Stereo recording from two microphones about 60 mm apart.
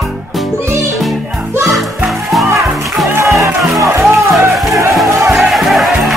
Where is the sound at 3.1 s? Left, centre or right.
Right.